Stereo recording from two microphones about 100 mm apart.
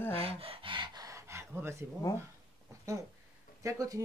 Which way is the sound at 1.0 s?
30° right (ahead or behind).